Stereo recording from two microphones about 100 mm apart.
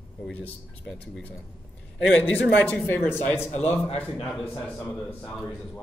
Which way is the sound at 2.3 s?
15° left (ahead or behind).